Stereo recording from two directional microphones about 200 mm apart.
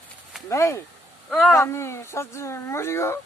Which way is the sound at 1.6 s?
15° left (ahead or behind).